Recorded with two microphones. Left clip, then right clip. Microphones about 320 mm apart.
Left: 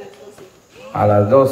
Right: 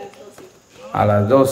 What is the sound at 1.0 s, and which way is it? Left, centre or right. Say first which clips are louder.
Speech: left 2 dB; centre.